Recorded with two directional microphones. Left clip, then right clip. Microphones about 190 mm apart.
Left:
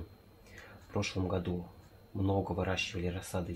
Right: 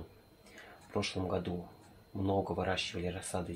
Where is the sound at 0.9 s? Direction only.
25° right (ahead or behind).